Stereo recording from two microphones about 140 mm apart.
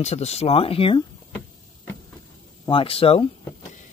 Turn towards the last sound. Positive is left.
turn(degrees=40)  # may be behind; listen again after turning